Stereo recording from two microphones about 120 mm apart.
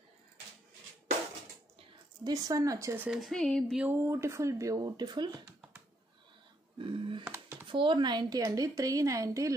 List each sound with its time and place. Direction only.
2.2 s a woman's voice: 30° right (ahead or behind)
3.1 s speech: centre (ahead or behind)
3.7 s a woman's voice: 15° right (ahead or behind); by 5.4 s 35° right (ahead or behind)
6.8 s speech: 45° right (ahead or behind)
7.2 s a sound: 15° right (ahead or behind)
7.6 s a woman's voice: 45° right (ahead or behind); by 9.6 s 25° right (ahead or behind)